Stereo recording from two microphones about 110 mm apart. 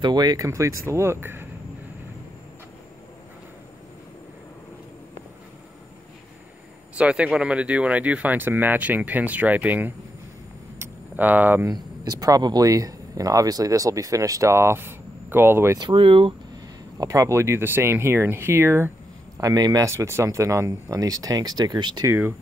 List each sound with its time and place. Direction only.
0.0 s speech: 40° right (ahead or behind)
0.5 s speech: 25° right (ahead or behind)
7.0 s speech: 10° right (ahead or behind)
10.8 s tick: 15° right (ahead or behind)
11.6 s speech: 35° right (ahead or behind)
15.8 s speech: 50° right (ahead or behind)
17.0 s speech: 30° right (ahead or behind)
19.3 s speech: 35° right (ahead or behind)
22.0 s speech: 20° right (ahead or behind)